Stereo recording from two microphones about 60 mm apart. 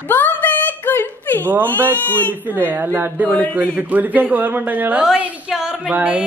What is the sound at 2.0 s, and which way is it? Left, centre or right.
Speech, left.